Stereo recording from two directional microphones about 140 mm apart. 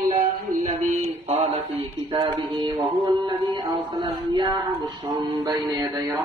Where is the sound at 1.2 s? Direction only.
45° right (ahead or behind); by 6.2 s 25° right (ahead or behind).